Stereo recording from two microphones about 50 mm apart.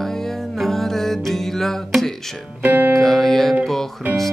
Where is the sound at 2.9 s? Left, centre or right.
Centre.